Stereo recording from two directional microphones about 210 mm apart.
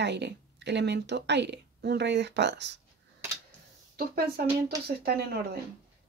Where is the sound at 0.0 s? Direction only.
55° right (ahead or behind).